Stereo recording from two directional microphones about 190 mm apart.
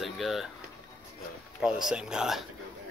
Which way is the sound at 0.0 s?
Centre (ahead or behind).